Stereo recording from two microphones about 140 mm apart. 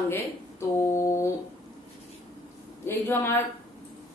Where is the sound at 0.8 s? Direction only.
20° left (ahead or behind).